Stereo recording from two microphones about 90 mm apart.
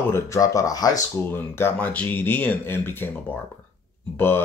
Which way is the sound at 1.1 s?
25° left (ahead or behind).